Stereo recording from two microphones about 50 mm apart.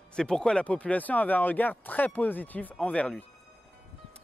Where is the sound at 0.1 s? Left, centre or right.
Centre.